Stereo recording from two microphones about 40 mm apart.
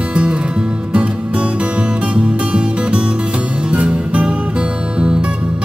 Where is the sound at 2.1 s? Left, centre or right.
Right.